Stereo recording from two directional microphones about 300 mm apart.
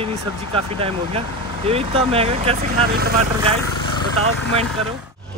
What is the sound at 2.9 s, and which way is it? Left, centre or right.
Speech, right.